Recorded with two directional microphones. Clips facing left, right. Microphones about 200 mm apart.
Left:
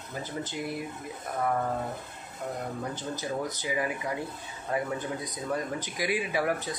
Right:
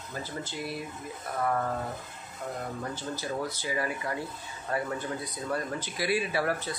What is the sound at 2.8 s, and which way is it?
Speech, 20° left (ahead or behind).